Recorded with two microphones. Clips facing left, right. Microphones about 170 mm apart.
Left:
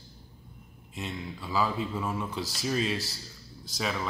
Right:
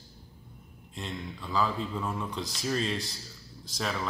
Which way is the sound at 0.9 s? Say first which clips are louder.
Left 1 dB; 5° left (ahead or behind).